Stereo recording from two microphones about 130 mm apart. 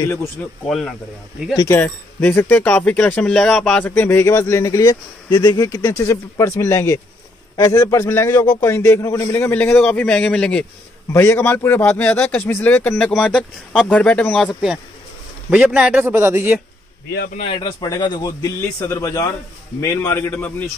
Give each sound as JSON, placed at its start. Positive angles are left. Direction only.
{"t": 0.0, "sound": "speech", "side_deg": 20}
{"t": 0.7, "sound": "speech", "side_deg": 0}
{"t": 1.7, "sound": "speech", "side_deg": 15}
{"t": 14.5, "sound": "a man's voice", "side_deg": -5}
{"t": 17.6, "sound": "speech", "side_deg": 35}